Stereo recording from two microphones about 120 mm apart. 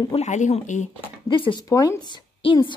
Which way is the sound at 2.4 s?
45° left (ahead or behind).